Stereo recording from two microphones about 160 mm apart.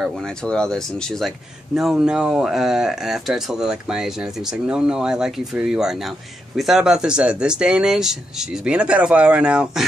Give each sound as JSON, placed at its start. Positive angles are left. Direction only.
{"t": 0.0, "sound": "speech", "side_deg": 5}